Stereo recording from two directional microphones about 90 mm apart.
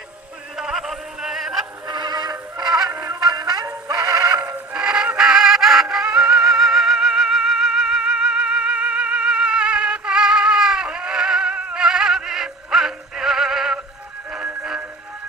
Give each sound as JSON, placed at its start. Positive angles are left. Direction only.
{"t": 0.6, "sound": "a sound", "side_deg": -5}
{"t": 1.9, "sound": "music", "side_deg": -50}
{"t": 2.9, "sound": "music", "side_deg": -25}
{"t": 3.3, "sound": "synthetic singing", "side_deg": -40}
{"t": 4.4, "sound": "synthetic singing", "side_deg": -15}
{"t": 14.5, "sound": "music", "side_deg": -10}